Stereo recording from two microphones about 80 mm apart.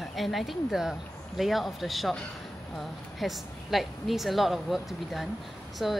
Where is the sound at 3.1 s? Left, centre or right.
Centre.